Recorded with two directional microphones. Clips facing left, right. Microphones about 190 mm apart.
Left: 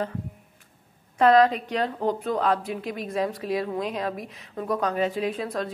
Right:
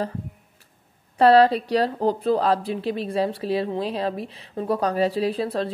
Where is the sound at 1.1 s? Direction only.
35° right (ahead or behind).